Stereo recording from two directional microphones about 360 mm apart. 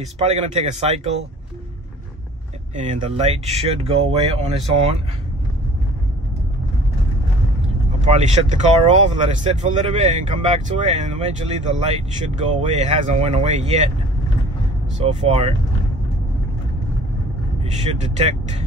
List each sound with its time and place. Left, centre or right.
0.2 s speech: centre
2.7 s speech: centre
8.0 s speech: centre
15.0 s speech: centre
17.7 s speech: centre